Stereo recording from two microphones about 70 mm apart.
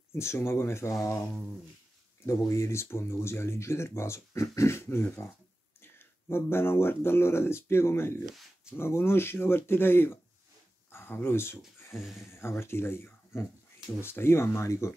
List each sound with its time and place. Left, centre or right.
0.1 s speech: left
4.8 s speech: left
12.0 s speech: centre
12.3 s speech: left